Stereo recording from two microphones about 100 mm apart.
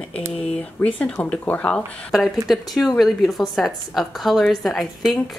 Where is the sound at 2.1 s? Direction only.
Centre (ahead or behind).